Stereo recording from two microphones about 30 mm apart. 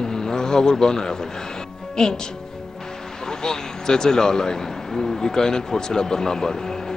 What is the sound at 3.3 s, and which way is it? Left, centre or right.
A man's voice, left.